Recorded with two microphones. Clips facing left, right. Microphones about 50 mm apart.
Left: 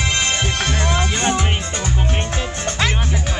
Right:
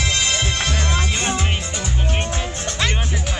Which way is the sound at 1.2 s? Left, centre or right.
Left.